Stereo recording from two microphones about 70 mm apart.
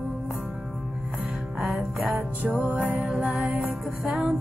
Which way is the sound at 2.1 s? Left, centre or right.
Right.